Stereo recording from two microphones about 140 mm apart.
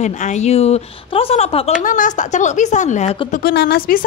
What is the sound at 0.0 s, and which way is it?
A woman's voice, 55° left (ahead or behind).